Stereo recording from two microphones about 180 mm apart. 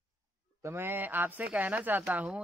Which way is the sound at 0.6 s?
15° right (ahead or behind).